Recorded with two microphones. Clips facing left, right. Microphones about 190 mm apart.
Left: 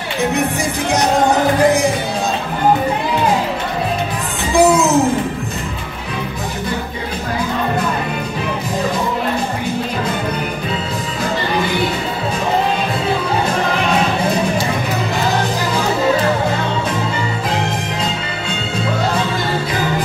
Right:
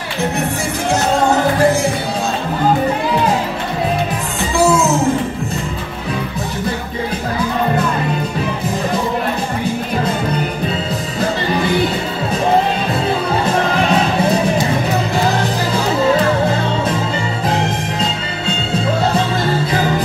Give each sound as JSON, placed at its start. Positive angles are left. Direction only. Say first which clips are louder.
{"t": 1.6, "sound": "speech", "louder": "left 2 dB", "side_deg": 15}
{"t": 4.6, "sound": "music", "louder": "left 2 dB", "side_deg": 15}